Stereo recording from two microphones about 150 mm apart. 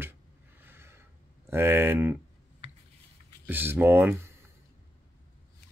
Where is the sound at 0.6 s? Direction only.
15° right (ahead or behind).